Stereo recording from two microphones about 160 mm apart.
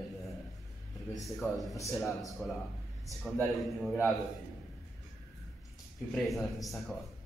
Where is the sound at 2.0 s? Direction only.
20° left (ahead or behind).